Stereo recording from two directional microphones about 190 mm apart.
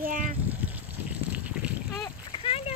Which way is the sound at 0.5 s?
10° right (ahead or behind).